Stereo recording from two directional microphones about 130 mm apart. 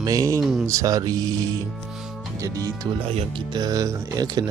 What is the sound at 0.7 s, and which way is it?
Speech, 25° right (ahead or behind).